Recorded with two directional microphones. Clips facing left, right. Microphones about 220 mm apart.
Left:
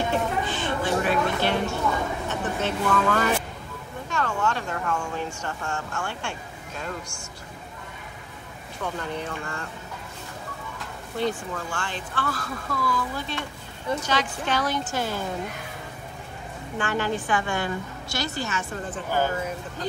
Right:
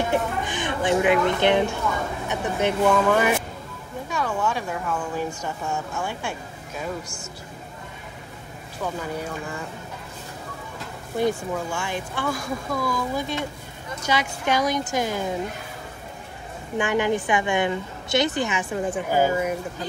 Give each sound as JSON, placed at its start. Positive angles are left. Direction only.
{"t": 0.1, "sound": "a sound", "side_deg": -15}
{"t": 2.2, "sound": "a woman's voice", "side_deg": -10}
{"t": 8.8, "sound": "a woman's voice", "side_deg": -5}
{"t": 11.1, "sound": "a woman's voice", "side_deg": -10}
{"t": 16.7, "sound": "a woman's voice", "side_deg": -15}